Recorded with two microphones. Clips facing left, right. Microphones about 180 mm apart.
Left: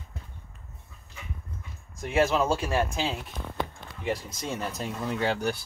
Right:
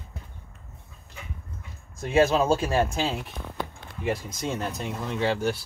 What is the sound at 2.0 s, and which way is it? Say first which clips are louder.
Speech: right 3 dB; 25° right (ahead or behind).